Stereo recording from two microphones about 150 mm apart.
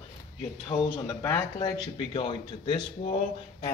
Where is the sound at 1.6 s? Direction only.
35° left (ahead or behind).